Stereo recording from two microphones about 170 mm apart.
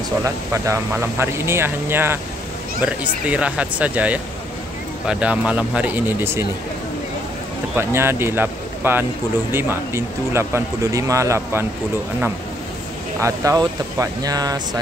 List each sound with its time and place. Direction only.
0.2 s speech: 15° right (ahead or behind)
7.7 s speech: 15° right (ahead or behind)
13.2 s speech: 20° right (ahead or behind)